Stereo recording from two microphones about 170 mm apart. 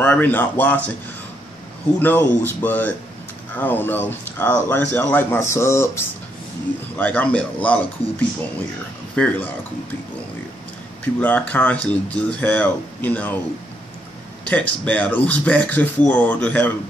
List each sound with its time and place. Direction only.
0.0 s speech: 10° left (ahead or behind)
2.0 s speech: 10° left (ahead or behind)
9.1 s speech: 5° left (ahead or behind)
11.1 s speech: 10° left (ahead or behind)
14.4 s speech: 10° left (ahead or behind)